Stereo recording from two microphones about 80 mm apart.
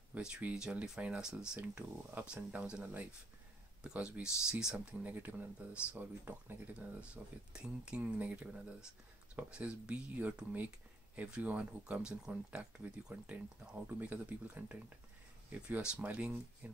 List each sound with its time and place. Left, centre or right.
0.1 s speech: centre
4.7 s speech: centre